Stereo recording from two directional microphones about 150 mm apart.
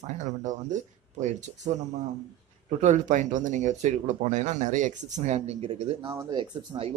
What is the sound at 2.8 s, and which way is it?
Speech, 55° right (ahead or behind).